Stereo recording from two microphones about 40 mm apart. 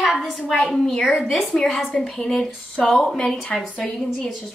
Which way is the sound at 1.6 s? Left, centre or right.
Centre.